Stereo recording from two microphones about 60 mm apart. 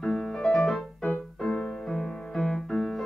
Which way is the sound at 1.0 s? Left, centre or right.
Left.